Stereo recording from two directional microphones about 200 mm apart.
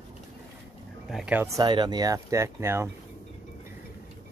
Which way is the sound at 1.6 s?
20° right (ahead or behind).